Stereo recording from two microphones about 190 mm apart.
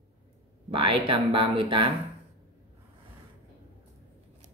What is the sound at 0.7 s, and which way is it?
Speech, 25° right (ahead or behind).